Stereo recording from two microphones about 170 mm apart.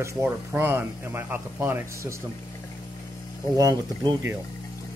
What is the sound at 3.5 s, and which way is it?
Speech, 20° right (ahead or behind).